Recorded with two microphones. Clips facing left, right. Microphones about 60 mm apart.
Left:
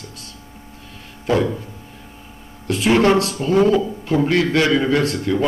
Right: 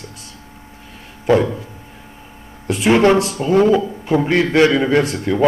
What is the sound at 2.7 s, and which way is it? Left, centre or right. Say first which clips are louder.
Speech: right 2 dB; right.